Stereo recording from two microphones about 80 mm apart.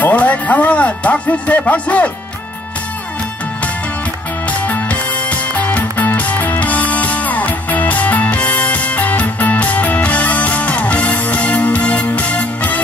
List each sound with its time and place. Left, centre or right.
0.0 s music: centre
4.5 s music: centre